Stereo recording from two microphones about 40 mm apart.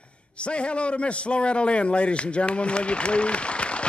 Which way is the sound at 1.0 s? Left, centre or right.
Left.